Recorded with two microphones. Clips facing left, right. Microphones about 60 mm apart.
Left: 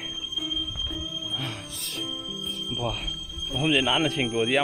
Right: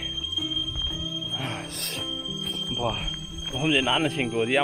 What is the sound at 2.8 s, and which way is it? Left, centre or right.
Speech, centre.